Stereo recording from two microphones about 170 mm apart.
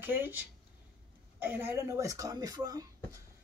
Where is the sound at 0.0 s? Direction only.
10° right (ahead or behind).